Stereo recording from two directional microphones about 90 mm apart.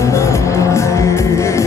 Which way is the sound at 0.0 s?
35° left (ahead or behind).